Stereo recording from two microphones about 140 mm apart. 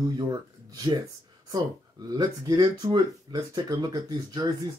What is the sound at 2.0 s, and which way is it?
Speech, 25° right (ahead or behind).